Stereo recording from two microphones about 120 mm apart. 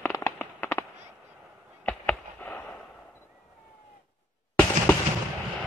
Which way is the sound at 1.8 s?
10° left (ahead or behind).